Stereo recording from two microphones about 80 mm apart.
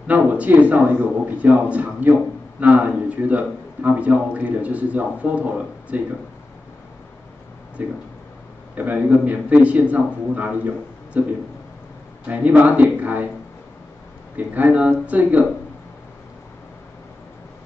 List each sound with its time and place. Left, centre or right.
0.0 s a man's voice: centre
7.8 s a man's voice: centre
14.3 s a man's voice: right